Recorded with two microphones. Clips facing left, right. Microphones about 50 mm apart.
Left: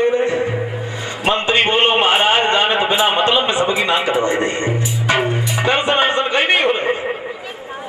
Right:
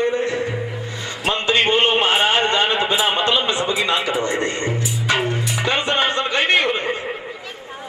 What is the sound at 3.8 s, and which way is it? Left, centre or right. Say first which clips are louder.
Music: left 4 dB; centre.